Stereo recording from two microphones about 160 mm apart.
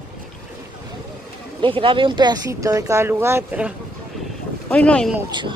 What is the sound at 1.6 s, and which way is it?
Speech, 30° right (ahead or behind).